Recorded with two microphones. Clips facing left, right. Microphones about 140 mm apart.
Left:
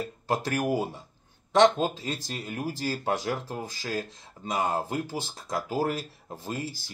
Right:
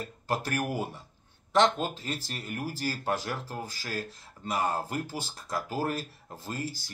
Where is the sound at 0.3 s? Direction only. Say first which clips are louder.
Left 4 dB; 15° left (ahead or behind).